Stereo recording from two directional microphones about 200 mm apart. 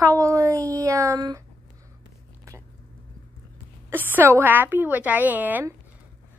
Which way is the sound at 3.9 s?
10° right (ahead or behind).